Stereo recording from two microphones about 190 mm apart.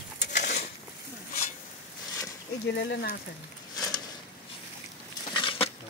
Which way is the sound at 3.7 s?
20° left (ahead or behind).